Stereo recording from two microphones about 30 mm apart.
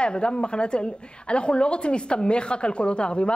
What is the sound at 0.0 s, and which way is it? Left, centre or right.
A woman's voice, left.